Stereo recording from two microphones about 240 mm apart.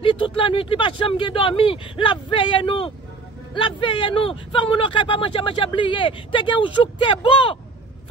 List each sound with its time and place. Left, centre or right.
0.0 s speech: left